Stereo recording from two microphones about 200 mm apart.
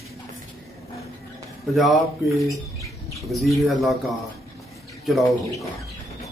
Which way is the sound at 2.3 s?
15° right (ahead or behind).